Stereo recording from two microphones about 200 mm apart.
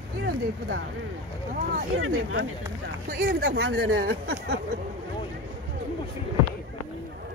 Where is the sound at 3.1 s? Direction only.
50° right (ahead or behind).